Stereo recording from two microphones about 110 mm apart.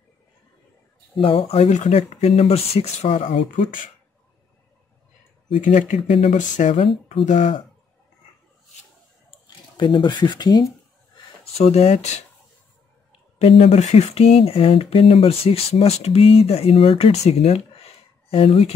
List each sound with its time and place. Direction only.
1.1 s speech: 55° left (ahead or behind); by 3.2 s 70° left (ahead or behind)
3.3 s speech: 50° left (ahead or behind)
5.5 s speech: 90° left
9.8 s speech: 40° left (ahead or behind)
11.5 s speech: 70° left (ahead or behind)
13.4 s speech: 65° left (ahead or behind)